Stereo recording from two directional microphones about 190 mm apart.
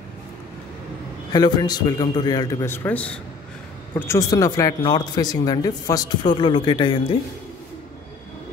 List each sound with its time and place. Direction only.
1.3 s speech: 20° left (ahead or behind)
3.9 s speech: 20° left (ahead or behind)